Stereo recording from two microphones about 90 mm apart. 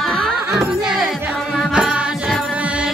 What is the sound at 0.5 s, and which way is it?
Music, 5° right (ahead or behind).